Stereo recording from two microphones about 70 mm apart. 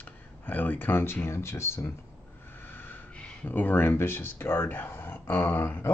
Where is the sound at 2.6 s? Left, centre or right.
Left.